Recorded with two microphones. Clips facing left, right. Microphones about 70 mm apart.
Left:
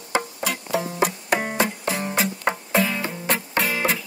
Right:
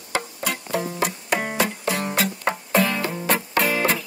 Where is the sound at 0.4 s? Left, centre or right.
Centre.